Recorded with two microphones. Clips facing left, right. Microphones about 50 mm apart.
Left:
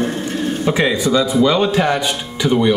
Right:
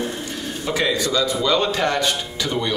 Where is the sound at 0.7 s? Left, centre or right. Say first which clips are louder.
Left 4 dB; left.